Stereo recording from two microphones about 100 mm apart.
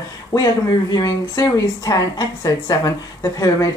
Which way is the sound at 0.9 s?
40° left (ahead or behind).